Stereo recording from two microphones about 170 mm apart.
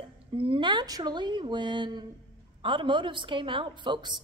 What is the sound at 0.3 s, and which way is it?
A woman's voice, 30° right (ahead or behind).